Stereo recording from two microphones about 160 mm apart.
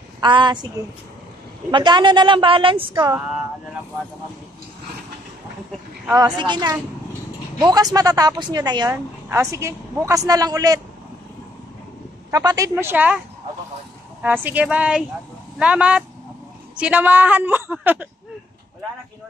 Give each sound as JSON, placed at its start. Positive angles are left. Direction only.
{"t": 0.2, "sound": "speech", "side_deg": -30}
{"t": 1.7, "sound": "a woman's voice", "side_deg": -30}
{"t": 2.9, "sound": "a woman's voice", "side_deg": -15}
{"t": 6.1, "sound": "speech", "side_deg": -30}
{"t": 8.9, "sound": "speech", "side_deg": -15}
{"t": 12.3, "sound": "speech", "side_deg": -20}
{"t": 14.2, "sound": "a woman's voice", "side_deg": -10}